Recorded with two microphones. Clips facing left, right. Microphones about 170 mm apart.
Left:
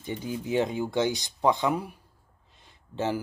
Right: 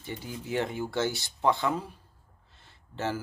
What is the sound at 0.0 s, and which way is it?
Speech, 20° left (ahead or behind).